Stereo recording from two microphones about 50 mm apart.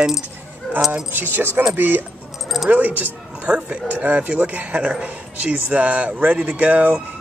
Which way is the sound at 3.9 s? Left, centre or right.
Right.